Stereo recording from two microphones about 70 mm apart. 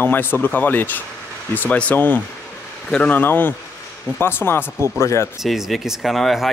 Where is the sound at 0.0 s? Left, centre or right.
Left.